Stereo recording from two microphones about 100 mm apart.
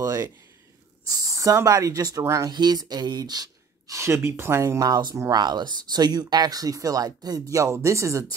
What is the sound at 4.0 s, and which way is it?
Speech, 25° right (ahead or behind).